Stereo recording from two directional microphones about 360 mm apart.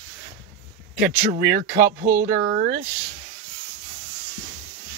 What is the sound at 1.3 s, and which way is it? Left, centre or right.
Speech, right.